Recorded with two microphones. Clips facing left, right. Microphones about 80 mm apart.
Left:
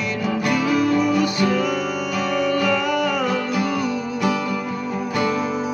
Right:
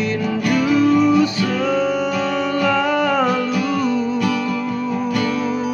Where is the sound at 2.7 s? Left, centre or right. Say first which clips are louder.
Right 3 dB; right.